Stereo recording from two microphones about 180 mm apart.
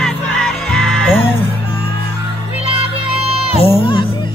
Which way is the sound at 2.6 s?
35° right (ahead or behind).